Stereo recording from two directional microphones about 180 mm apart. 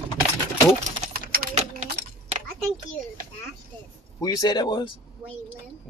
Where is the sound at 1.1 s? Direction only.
60° right (ahead or behind).